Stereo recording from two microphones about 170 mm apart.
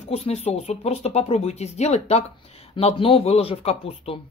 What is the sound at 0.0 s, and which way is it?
Speech, 40° left (ahead or behind).